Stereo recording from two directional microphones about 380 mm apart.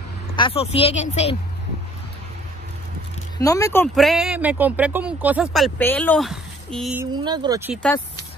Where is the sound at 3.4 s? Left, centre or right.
Centre.